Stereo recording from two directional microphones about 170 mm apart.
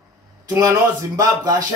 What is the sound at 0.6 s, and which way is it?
Speech, 20° right (ahead or behind).